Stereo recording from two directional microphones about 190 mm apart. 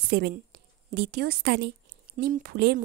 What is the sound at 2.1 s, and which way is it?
Speech, 50° right (ahead or behind).